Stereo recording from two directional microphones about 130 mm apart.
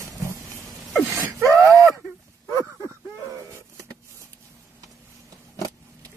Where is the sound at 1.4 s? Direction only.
25° right (ahead or behind).